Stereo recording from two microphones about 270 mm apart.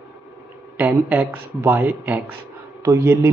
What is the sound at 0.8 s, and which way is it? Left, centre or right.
Speech, centre.